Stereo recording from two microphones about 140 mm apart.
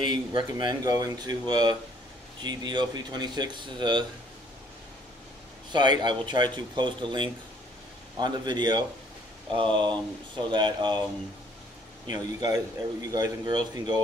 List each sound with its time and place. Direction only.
0.0 s a man's voice: 35° right (ahead or behind)
5.7 s speech: 30° right (ahead or behind)
12.1 s a man's voice: 25° right (ahead or behind)